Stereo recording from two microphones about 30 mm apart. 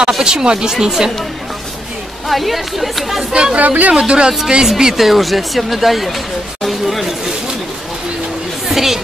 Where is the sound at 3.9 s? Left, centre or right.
Right.